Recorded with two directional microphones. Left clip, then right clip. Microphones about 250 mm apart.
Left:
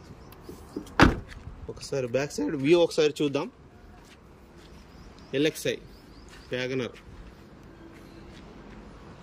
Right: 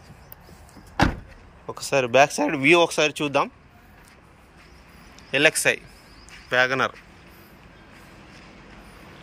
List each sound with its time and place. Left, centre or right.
1.9 s speech: centre
2.6 s speech: centre
5.3 s speech: centre